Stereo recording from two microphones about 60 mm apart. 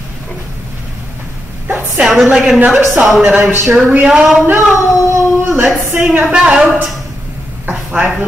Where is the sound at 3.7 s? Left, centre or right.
Centre.